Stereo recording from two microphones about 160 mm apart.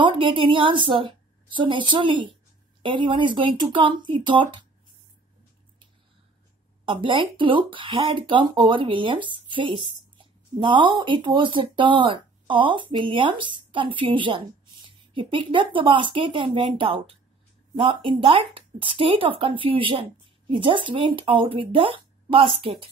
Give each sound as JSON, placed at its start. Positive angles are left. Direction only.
{"t": 0.0, "sound": "a woman's voice", "side_deg": -30}
{"t": 6.9, "sound": "speech", "side_deg": -30}